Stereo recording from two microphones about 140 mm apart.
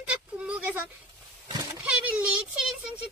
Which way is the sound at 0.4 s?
10° right (ahead or behind).